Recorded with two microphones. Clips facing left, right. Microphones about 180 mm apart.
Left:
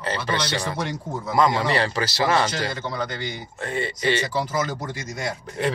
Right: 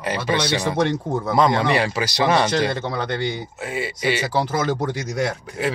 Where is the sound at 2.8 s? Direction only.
60° right (ahead or behind).